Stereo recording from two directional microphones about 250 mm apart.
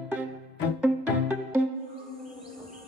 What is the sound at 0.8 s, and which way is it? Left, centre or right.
Music, centre.